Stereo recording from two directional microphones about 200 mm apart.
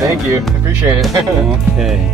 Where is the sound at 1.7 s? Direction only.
Centre (ahead or behind).